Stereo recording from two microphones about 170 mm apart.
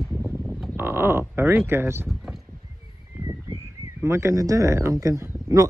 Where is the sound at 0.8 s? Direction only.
15° right (ahead or behind).